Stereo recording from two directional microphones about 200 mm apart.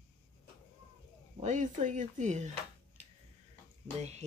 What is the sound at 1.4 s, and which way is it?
Speech, 40° right (ahead or behind).